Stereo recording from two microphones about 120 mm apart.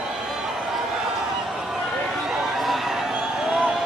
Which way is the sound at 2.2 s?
Centre (ahead or behind).